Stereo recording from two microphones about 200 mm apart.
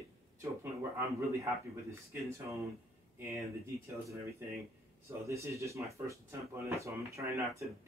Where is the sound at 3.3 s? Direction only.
15° right (ahead or behind).